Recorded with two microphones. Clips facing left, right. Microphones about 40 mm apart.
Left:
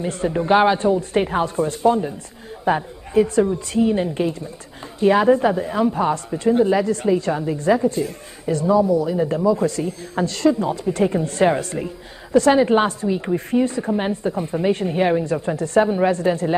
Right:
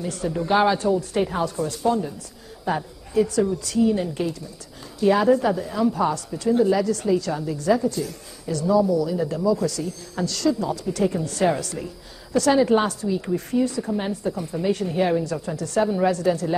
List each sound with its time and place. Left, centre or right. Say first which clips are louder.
0.0 s a woman's voice: left 4 dB; left